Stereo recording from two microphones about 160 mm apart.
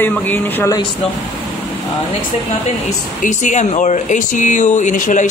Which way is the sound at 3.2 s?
50° left (ahead or behind).